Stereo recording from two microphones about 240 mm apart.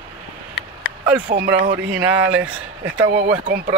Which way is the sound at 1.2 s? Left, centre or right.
Right.